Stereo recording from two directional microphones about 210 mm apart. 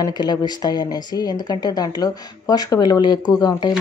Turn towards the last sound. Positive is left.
turn(degrees=20)  # may be behind; listen again after turning